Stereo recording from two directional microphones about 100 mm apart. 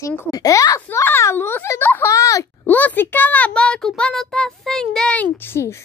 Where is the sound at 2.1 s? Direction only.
35° left (ahead or behind).